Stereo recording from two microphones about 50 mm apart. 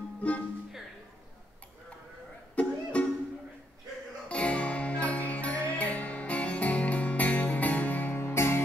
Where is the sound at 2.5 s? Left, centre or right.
Left.